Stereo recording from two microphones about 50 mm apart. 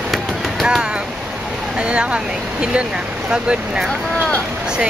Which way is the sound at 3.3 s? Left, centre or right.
Centre.